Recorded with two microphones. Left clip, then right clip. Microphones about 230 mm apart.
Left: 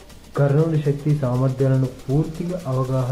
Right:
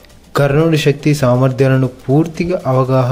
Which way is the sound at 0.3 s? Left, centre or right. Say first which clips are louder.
Right 8 dB; right.